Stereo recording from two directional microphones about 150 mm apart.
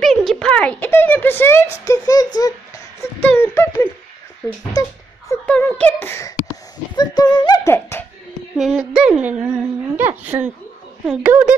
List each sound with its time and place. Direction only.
0.0 s a child's voice: centre (ahead or behind); by 2.5 s 25° left (ahead or behind)
3.2 s a sound: 15° left (ahead or behind)
5.5 s speech: 10° left (ahead or behind)
7.0 s speech: 25° left (ahead or behind)
8.5 s a woman's voice: 5° right (ahead or behind)